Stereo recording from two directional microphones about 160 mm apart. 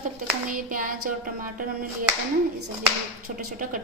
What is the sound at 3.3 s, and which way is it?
Music, 55° right (ahead or behind).